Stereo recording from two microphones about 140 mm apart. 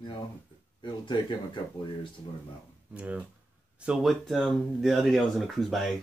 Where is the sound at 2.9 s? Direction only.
10° right (ahead or behind).